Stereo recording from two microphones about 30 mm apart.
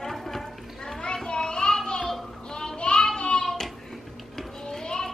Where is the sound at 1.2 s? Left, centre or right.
Left.